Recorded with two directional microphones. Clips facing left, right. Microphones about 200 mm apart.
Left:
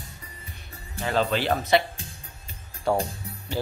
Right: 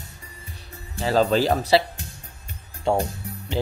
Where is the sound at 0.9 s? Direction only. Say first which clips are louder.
Right 5 dB; 35° right (ahead or behind).